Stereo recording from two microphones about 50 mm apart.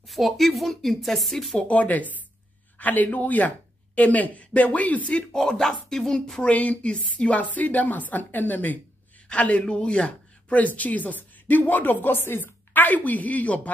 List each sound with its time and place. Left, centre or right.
0.0 s a woman's voice: centre
1.7 s speech: left
5.1 s speech: centre
6.4 s speech: left